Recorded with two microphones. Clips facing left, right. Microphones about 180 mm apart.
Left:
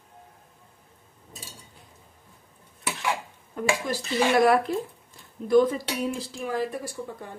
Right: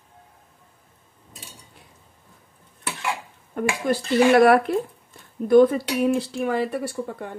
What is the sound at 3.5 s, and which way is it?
Speech, 60° right (ahead or behind).